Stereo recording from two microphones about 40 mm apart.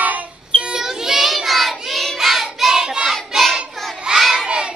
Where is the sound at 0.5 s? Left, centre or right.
Centre.